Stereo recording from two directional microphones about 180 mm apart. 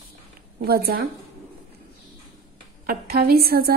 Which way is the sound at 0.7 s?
60° right (ahead or behind).